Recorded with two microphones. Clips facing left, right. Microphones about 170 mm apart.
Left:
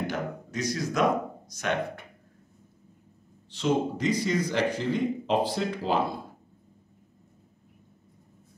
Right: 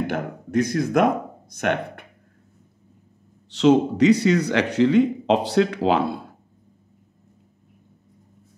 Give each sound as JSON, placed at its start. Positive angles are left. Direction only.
{"t": 0.0, "sound": "speech", "side_deg": -55}
{"t": 3.4, "sound": "speech", "side_deg": -75}